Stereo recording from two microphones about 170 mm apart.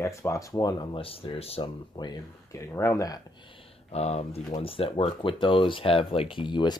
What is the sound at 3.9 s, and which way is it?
Speech, 40° left (ahead or behind).